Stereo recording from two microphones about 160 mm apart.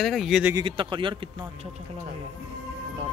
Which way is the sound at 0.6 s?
30° right (ahead or behind).